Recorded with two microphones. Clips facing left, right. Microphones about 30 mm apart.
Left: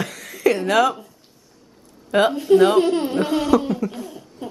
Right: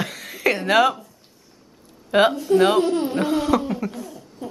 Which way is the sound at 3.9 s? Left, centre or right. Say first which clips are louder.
Left 1 dB; left.